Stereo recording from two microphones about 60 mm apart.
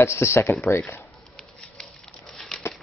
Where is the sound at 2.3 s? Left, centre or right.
Centre.